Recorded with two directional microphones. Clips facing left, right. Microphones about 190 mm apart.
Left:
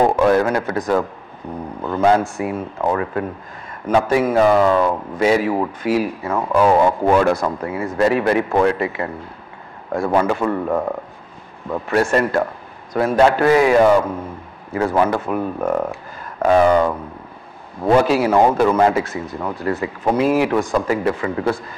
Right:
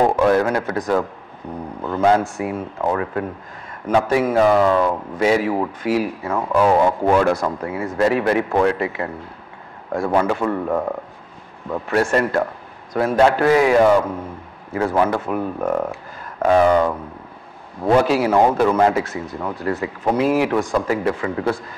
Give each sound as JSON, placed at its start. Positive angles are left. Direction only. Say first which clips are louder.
{"t": 0.2, "sound": "a man's voice", "louder": "left 1 dB", "side_deg": 20}
{"t": 6.5, "sound": "speech", "louder": "left 1 dB", "side_deg": 15}
{"t": 7.7, "sound": "speech", "louder": "left 1 dB", "side_deg": 15}